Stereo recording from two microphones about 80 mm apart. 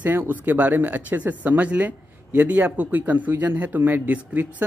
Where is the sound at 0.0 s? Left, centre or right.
Right.